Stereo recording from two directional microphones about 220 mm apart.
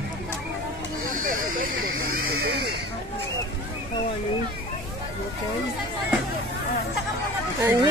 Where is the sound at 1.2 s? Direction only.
40° right (ahead or behind).